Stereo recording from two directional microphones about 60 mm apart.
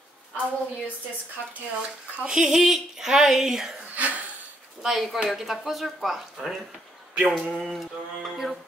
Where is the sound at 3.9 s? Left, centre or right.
Right.